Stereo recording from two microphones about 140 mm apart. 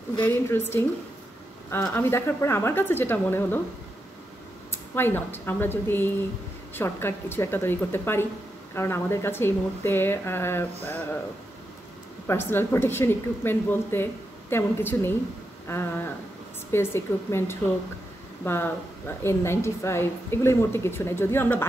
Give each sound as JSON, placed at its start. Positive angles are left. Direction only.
{"t": 0.5, "sound": "a woman's voice", "side_deg": 15}
{"t": 4.6, "sound": "a woman's voice", "side_deg": 15}
{"t": 12.3, "sound": "a woman's voice", "side_deg": 15}